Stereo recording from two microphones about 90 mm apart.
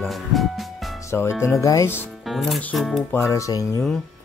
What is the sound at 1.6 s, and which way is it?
Speech, 35° left (ahead or behind).